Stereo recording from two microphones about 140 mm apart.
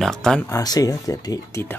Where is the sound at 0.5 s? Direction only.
25° left (ahead or behind).